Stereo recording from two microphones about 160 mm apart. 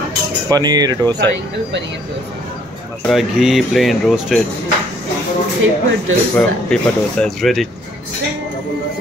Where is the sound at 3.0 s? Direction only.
Centre (ahead or behind).